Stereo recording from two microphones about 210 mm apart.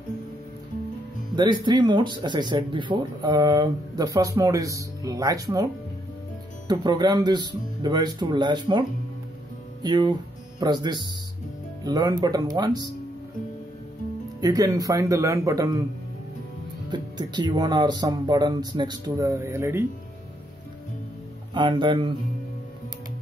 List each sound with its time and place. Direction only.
1.3 s speech: 20° right (ahead or behind)
6.7 s speech: 20° right (ahead or behind)
9.8 s speech: 20° right (ahead or behind)
14.4 s speech: 15° right (ahead or behind)
16.9 s speech: 20° right (ahead or behind)
21.5 s speech: 20° right (ahead or behind)